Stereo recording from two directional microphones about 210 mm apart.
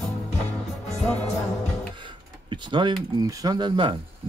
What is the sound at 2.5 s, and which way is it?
Speech, 20° right (ahead or behind).